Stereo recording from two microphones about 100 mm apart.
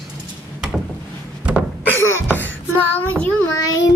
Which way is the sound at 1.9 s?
20° left (ahead or behind).